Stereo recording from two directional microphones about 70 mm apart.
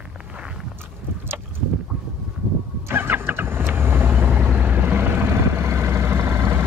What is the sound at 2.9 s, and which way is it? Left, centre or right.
Vehicle, right.